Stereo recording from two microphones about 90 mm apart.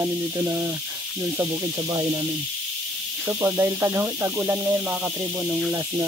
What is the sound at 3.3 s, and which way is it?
Speech, 30° right (ahead or behind).